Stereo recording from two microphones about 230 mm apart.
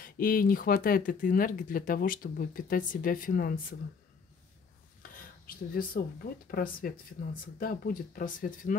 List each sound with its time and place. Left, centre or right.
0.0 s speech: left
5.1 s a sound: left
6.4 s speech: left